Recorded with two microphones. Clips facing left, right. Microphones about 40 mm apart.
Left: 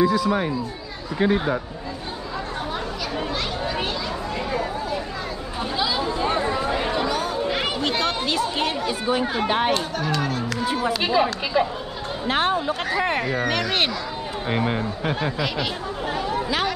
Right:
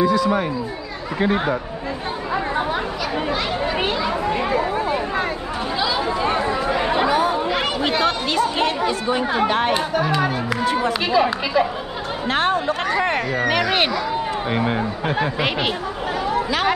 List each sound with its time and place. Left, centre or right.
0.0 s speech: centre
2.3 s chatter: right
3.3 s a sound: right
6.9 s chatter: right
7.4 s speech: centre
10.6 s speech: centre
12.3 s speech: centre
15.3 s speech: right